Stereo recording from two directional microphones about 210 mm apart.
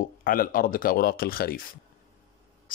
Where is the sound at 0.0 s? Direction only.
40° left (ahead or behind).